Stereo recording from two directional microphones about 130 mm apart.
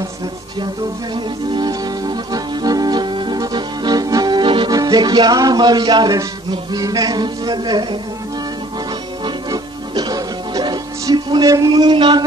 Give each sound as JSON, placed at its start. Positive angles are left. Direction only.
{"t": 1.1, "sound": "music", "side_deg": -35}
{"t": 9.2, "sound": "music", "side_deg": -35}